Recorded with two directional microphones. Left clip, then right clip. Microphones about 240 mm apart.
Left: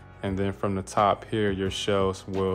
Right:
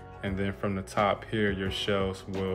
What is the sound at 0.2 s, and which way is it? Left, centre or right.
Speech, centre.